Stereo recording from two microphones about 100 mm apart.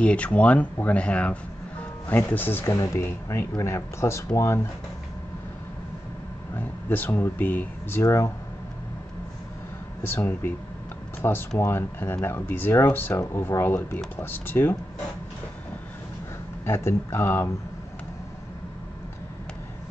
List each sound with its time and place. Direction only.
0.0 s speech: 15° left (ahead or behind)
6.5 s speech: 20° left (ahead or behind)
8.0 s speech: 25° left (ahead or behind)
10.0 s speech: 20° left (ahead or behind)
16.6 s speech: 25° left (ahead or behind)